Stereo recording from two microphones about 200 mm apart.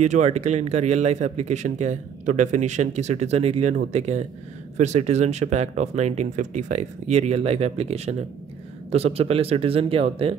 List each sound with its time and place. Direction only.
0.0 s a man's voice: 35° right (ahead or behind)